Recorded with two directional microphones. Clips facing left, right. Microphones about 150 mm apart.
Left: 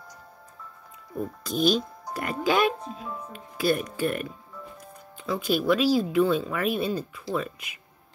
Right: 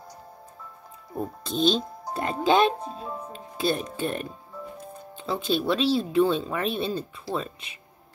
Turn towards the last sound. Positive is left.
turn(degrees=-30)  # may be behind; listen again after turning